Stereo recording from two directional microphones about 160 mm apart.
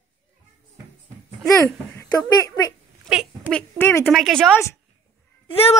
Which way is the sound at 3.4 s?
10° left (ahead or behind).